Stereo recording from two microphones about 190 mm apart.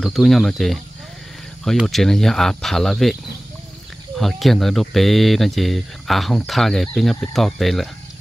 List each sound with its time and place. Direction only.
0.0 s speech: centre (ahead or behind)
4.2 s speech: centre (ahead or behind)